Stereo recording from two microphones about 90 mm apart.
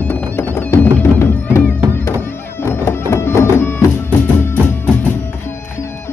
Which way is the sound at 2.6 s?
30° left (ahead or behind).